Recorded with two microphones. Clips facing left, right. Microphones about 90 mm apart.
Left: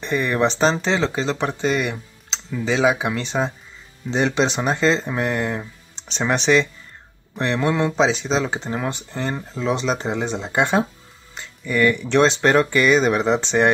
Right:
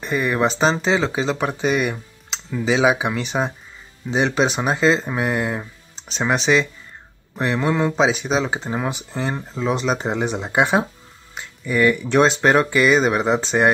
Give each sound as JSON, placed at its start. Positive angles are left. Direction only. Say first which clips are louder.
{"t": 0.0, "sound": "speech", "louder": "even", "side_deg": -5}